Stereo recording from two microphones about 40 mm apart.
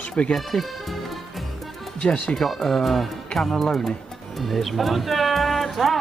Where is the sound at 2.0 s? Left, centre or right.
Left.